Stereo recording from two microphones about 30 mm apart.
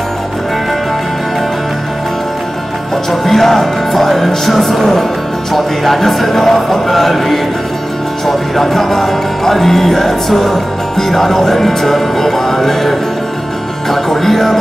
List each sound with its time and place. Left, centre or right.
3.3 s music: centre